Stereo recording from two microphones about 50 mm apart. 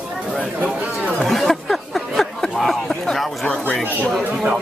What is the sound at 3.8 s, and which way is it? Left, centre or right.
Speech, right.